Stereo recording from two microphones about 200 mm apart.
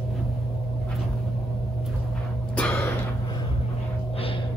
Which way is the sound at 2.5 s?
10° left (ahead or behind).